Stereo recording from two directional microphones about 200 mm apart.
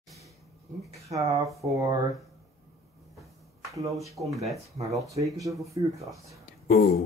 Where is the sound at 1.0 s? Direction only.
15° right (ahead or behind).